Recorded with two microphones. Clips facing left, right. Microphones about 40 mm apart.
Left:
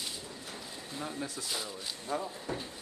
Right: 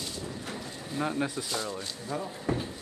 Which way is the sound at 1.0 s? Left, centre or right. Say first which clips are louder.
Right 9 dB; right.